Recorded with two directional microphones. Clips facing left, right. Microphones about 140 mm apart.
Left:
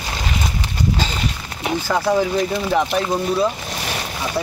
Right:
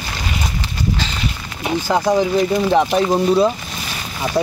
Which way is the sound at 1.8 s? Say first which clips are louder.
Right 2 dB; 15° right (ahead or behind).